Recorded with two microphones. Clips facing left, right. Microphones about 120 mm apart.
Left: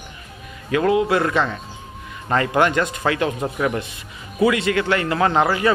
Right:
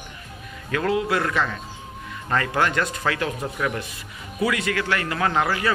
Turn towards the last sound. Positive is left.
turn(degrees=25)  # may be behind; listen again after turning